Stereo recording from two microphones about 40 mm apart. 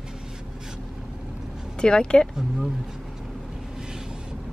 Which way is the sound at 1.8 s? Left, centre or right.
Left.